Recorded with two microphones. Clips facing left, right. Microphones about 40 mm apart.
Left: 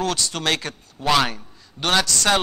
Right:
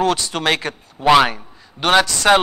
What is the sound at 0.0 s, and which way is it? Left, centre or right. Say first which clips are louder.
A man's voice: right 5 dB; centre.